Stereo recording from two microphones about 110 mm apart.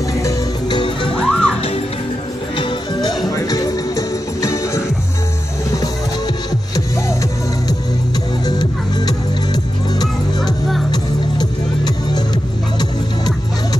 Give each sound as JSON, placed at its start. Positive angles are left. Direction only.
{"t": 0.2, "sound": "music", "side_deg": 45}
{"t": 1.1, "sound": "music", "side_deg": 10}
{"t": 2.5, "sound": "music", "side_deg": 40}
{"t": 8.5, "sound": "music", "side_deg": 40}
{"t": 10.9, "sound": "music", "side_deg": 40}